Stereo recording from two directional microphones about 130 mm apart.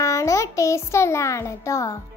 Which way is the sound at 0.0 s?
20° left (ahead or behind).